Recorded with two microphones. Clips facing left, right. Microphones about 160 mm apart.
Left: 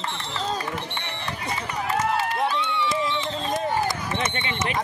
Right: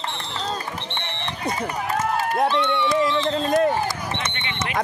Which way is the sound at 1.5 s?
45° right (ahead or behind).